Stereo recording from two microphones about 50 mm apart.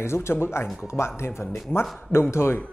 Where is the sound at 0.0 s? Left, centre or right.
Left.